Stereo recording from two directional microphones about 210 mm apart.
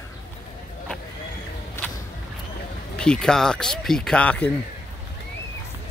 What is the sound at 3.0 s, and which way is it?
Speech, 5° left (ahead or behind).